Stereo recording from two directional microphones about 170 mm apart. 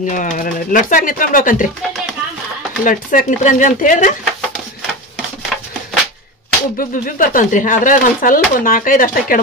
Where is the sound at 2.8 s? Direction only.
50° left (ahead or behind).